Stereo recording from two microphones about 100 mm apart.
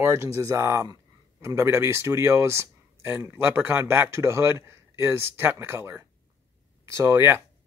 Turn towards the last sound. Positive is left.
turn(degrees=-25)  # may be behind; listen again after turning